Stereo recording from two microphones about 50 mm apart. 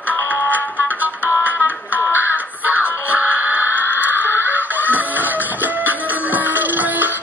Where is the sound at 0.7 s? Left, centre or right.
Right.